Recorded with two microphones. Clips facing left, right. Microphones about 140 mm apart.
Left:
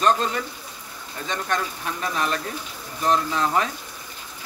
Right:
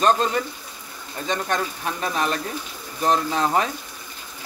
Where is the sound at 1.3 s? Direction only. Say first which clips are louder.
Right 2 dB; 20° right (ahead or behind).